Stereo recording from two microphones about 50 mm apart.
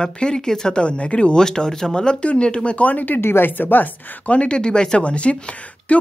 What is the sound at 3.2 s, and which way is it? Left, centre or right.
Speech, left.